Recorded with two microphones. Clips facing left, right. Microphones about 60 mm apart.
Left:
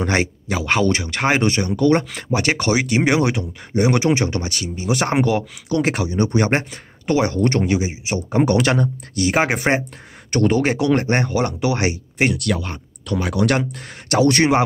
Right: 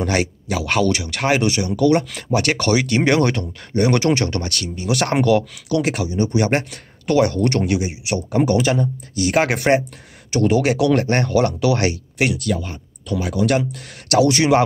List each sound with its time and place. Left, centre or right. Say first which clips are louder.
0.0 s speech: even; left
2.0 s speech: right 1 dB; left
6.4 s speech: even; left
8.5 s speech: even; left
9.3 s speech: right 2 dB; left
10.3 s speech: even; left
10.9 s speech: right 1 dB; left
12.4 s speech: even; left